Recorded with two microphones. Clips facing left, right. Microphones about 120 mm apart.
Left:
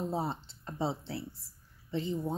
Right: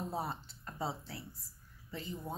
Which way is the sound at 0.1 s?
25° left (ahead or behind).